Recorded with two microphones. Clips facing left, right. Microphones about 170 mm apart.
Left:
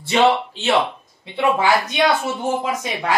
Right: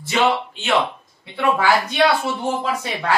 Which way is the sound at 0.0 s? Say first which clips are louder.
Left 3 dB; 30° left (ahead or behind).